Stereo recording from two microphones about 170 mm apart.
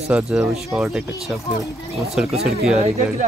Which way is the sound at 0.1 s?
Centre (ahead or behind).